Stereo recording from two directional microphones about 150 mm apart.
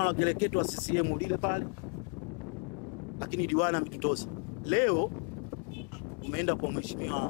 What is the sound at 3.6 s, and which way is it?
Speech, 15° left (ahead or behind).